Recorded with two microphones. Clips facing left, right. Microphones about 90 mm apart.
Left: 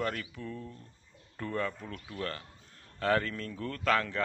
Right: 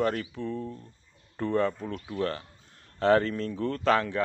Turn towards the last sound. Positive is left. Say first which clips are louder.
# right 5 dB
turn(degrees=-25)  # may be behind; listen again after turning